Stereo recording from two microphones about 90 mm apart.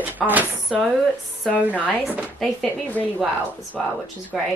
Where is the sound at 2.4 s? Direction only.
Centre (ahead or behind).